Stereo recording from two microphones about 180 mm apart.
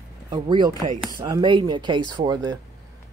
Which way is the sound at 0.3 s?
25° right (ahead or behind).